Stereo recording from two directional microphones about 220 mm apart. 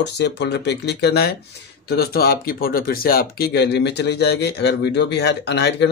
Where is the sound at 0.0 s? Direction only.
50° left (ahead or behind).